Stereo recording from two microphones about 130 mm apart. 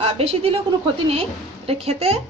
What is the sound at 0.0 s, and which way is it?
A woman's voice, 50° right (ahead or behind).